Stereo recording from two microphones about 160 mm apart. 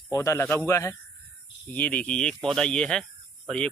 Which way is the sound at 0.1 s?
20° left (ahead or behind).